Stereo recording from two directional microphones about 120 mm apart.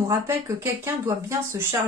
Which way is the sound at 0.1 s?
20° right (ahead or behind).